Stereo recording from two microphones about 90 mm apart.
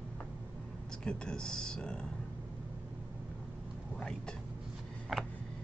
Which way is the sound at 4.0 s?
5° left (ahead or behind).